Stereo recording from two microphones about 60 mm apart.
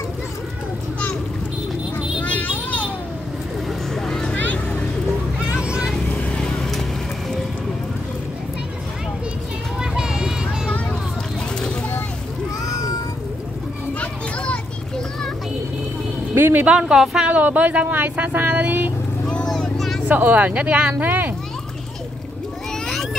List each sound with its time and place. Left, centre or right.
2.2 s a sound: left
3.6 s vehicle: centre
4.4 s a sound: left
5.4 s vehicle: centre
6.4 s music: centre
9.8 s a sound: centre
12.6 s meow: left
13.9 s children playing: centre
16.3 s music: right
16.8 s speech: centre
17.3 s speech: right
19.2 s a sound: centre
19.5 s vehicle: centre
20.1 s speech: right